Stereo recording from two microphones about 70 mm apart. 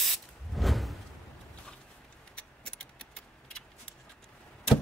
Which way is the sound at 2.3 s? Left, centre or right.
Centre.